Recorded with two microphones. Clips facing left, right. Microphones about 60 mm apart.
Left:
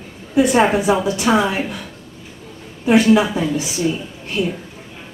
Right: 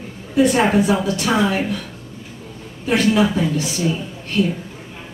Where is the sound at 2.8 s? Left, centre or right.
Centre.